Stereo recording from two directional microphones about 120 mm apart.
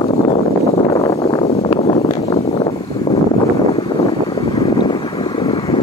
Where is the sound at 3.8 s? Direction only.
40° left (ahead or behind).